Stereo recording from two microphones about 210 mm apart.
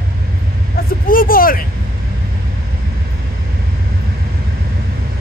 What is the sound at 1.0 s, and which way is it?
Vehicle, 45° left (ahead or behind).